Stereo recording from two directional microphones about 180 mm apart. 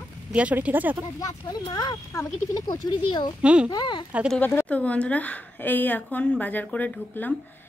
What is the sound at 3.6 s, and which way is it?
Speech, 25° left (ahead or behind).